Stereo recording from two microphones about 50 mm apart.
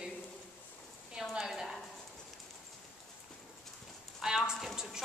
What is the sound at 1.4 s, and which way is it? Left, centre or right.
Speech, centre.